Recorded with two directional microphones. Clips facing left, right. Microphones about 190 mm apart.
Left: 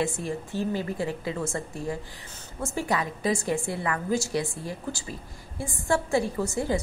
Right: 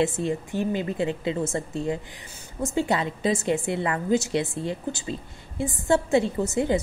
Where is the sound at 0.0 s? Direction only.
25° right (ahead or behind).